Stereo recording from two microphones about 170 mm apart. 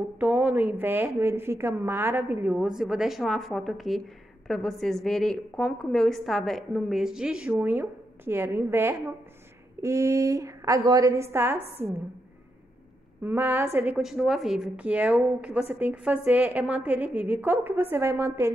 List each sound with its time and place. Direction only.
0.2 s a woman's voice: 10° right (ahead or behind)
13.2 s a woman's voice: 10° right (ahead or behind)